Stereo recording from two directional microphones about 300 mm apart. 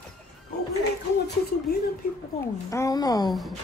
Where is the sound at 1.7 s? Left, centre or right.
Left.